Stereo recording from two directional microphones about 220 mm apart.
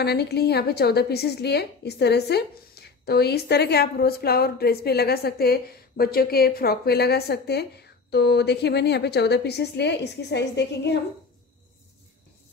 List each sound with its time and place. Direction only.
0.0 s a woman's voice: 50° left (ahead or behind)